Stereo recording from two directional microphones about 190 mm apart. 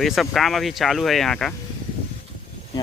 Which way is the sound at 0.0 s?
Centre (ahead or behind).